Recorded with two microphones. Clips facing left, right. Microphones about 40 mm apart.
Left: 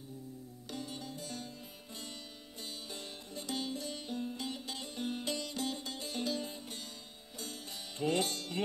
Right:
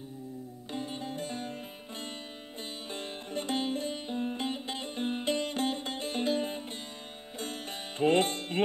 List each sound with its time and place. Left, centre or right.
0.7 s music: right